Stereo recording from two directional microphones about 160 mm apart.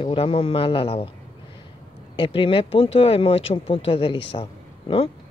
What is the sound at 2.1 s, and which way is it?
Speech, 35° left (ahead or behind).